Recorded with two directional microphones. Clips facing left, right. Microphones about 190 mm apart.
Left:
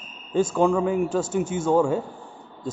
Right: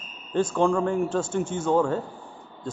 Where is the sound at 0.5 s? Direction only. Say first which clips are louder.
Left 1 dB; 5° left (ahead or behind).